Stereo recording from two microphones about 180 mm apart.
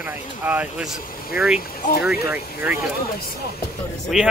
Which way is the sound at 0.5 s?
10° right (ahead or behind).